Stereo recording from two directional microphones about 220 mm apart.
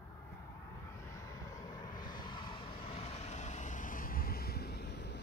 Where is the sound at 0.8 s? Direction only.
15° left (ahead or behind).